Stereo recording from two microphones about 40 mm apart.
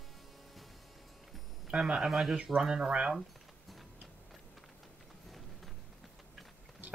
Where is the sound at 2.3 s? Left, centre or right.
Right.